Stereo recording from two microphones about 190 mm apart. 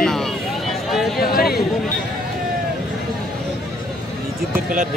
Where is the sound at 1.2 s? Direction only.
55° left (ahead or behind).